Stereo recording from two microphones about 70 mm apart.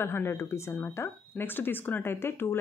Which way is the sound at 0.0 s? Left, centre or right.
Left.